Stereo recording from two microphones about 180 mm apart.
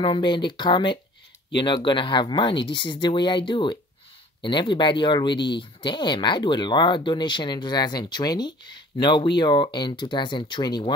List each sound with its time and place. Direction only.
0.0 s speech: 25° left (ahead or behind)